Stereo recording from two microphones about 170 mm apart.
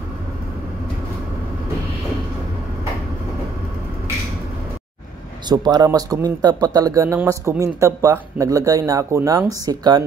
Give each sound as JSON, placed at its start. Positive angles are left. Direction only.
{"t": 5.5, "sound": "speech", "side_deg": -25}